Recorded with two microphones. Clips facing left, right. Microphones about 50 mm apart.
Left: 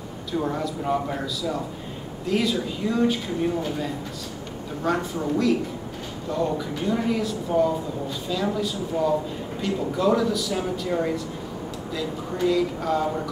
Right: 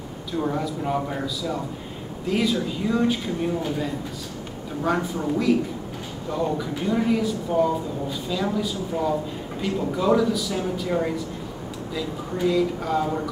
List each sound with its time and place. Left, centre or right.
0.3 s speech: centre